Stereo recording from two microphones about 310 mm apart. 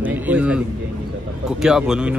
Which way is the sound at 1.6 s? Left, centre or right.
Centre.